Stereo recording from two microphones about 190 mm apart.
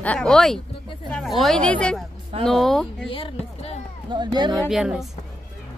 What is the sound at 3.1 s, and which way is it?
Speech, 30° left (ahead or behind).